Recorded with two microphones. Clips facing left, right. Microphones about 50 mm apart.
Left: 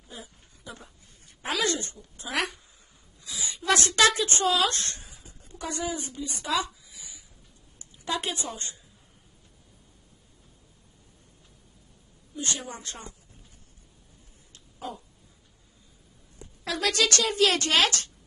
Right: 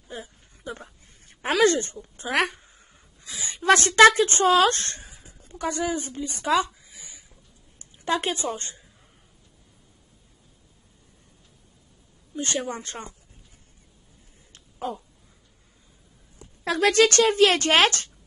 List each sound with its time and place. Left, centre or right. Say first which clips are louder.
0.1 s a sound: right 6 dB; right
4.6 s a woman's voice: right 6 dB; right
6.8 s a sound: right 1 dB; right
7.9 s speech: right 5 dB; right
12.5 s a woman's voice: right 8 dB; right
16.6 s a woman's voice: right 7 dB; right